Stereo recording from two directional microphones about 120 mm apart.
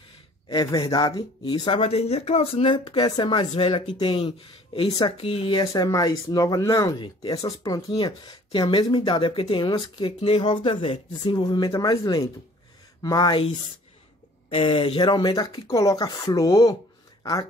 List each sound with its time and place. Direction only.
0.5 s speech: 40° left (ahead or behind)
1.4 s speech: 45° left (ahead or behind)
1.8 s speech: 60° left (ahead or behind)
5.6 s speech: 30° left (ahead or behind)
8.0 s speech: 45° left (ahead or behind)
14.5 s speech: 50° left (ahead or behind); by 17.5 s 30° left (ahead or behind)